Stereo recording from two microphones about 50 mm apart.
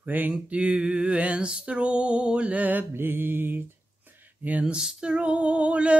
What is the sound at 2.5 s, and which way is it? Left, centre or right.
Mantra, right.